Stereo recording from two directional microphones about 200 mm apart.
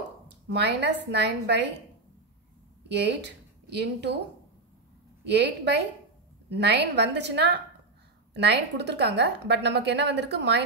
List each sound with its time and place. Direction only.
0.5 s a woman's voice: 60° right (ahead or behind)
2.9 s speech: 60° right (ahead or behind)
6.5 s a woman's voice: 60° right (ahead or behind)